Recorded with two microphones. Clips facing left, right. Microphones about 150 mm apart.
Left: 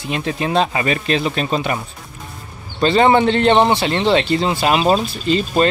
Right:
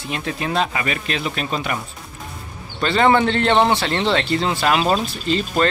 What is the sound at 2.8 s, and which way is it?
Speech, 20° left (ahead or behind).